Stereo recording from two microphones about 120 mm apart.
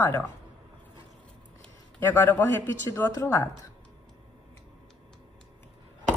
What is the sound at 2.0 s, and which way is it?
Speech, 15° left (ahead or behind).